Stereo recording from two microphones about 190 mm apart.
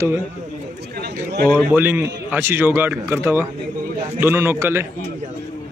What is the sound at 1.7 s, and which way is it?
Speech, 10° right (ahead or behind).